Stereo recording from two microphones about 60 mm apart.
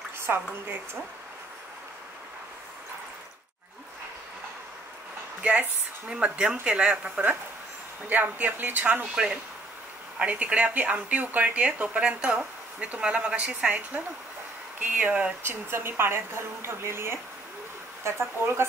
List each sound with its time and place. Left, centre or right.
5.4 s a woman's voice: right
8.1 s a woman's voice: right
15.4 s a woman's voice: right